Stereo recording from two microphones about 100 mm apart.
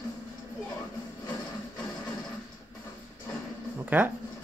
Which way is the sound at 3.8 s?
20° right (ahead or behind).